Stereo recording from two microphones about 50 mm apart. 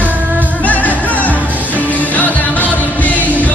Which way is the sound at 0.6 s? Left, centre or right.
Left.